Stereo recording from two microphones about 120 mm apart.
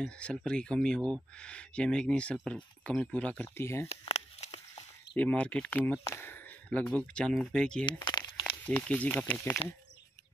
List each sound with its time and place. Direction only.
0.0 s speech: 5° left (ahead or behind)
3.9 s a sound: 60° left (ahead or behind)
5.1 s speech: 10° left (ahead or behind)
7.8 s crumpling: 40° left (ahead or behind)
8.6 s speech: 10° left (ahead or behind)